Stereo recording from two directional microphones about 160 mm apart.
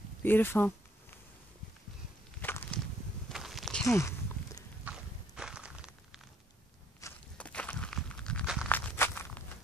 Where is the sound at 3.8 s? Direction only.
20° left (ahead or behind).